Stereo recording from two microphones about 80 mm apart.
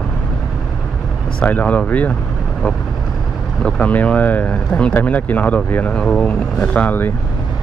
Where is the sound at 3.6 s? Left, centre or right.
Centre.